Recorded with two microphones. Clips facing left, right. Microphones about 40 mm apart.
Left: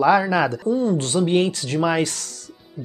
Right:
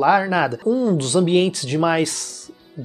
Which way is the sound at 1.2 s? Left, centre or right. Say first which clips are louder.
Right 2 dB; right.